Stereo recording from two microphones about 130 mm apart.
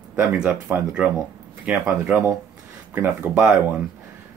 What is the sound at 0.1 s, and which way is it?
Speech, 15° right (ahead or behind).